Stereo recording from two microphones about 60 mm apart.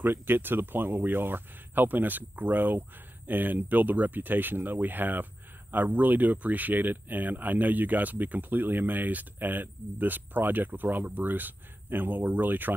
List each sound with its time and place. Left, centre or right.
0.0 s speech: right